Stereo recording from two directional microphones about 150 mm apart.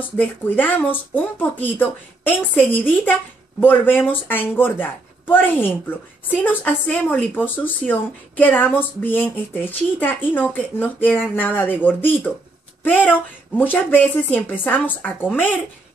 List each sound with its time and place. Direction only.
0.2 s speech: 10° left (ahead or behind)